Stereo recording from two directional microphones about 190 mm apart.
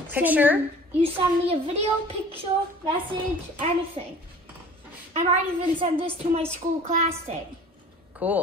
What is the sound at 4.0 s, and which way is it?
Speech, 30° right (ahead or behind).